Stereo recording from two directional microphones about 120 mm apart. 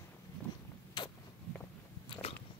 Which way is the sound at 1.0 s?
40° left (ahead or behind).